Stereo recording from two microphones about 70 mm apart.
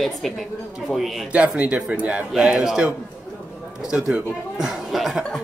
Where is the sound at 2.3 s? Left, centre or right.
Centre.